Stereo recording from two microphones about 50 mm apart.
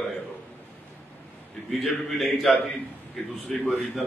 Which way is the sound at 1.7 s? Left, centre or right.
Centre.